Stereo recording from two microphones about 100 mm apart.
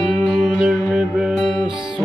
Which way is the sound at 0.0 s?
Centre (ahead or behind).